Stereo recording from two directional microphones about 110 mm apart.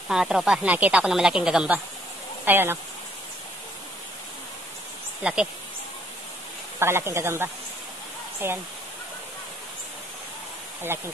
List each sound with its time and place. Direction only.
0.1 s speech: 5° right (ahead or behind)
2.4 s speech: 20° right (ahead or behind)
5.2 s speech: 10° right (ahead or behind)
6.8 s speech: 20° right (ahead or behind)
10.9 s speech: 20° right (ahead or behind)